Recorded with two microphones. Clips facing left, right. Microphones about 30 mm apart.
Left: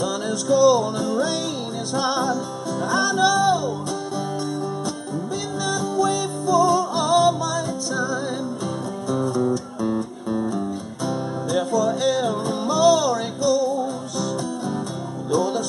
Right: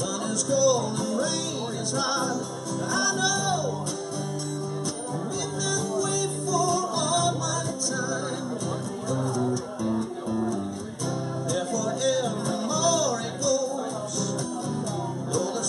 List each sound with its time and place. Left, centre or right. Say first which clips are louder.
0.0 s music: left 4 dB; left
5.7 s music: left 7 dB; centre
11.1 s music: left 5 dB; centre
15.3 s music: left 7 dB; centre